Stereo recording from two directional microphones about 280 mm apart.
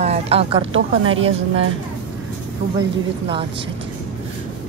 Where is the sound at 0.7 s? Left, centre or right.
Right.